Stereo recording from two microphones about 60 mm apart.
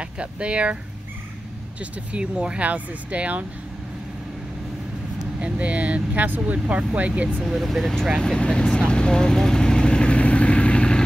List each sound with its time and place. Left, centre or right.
0.0 s speech: centre
1.8 s speech: centre
5.4 s speech: right
7.4 s speech: centre
8.2 s vehicle: centre